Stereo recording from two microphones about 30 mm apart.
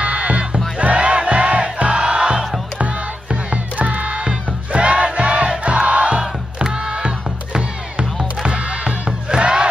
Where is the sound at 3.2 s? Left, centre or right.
Right.